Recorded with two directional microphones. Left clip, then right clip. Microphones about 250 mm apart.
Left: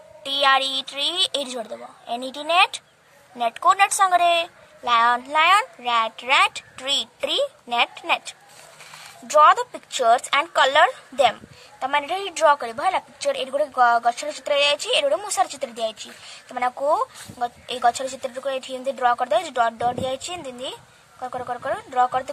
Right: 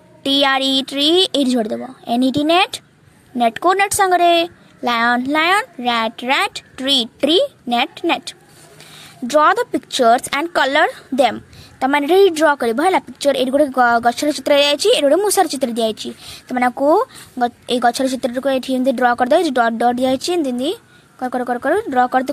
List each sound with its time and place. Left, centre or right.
0.2 s speech: right